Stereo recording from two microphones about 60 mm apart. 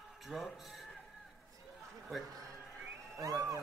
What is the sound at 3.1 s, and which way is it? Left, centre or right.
Speech, right.